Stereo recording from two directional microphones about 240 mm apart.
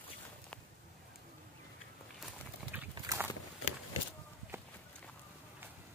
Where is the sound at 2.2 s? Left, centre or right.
Centre.